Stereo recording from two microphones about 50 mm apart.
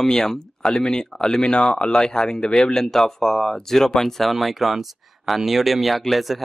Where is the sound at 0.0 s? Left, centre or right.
Centre.